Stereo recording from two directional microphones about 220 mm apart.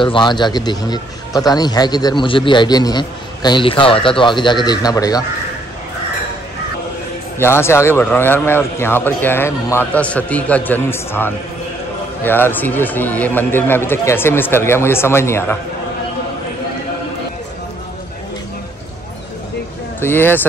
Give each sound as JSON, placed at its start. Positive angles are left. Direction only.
{"t": 0.0, "sound": "a man's voice", "side_deg": 20}
{"t": 7.3, "sound": "a man's voice", "side_deg": 10}
{"t": 20.0, "sound": "a man's voice", "side_deg": 10}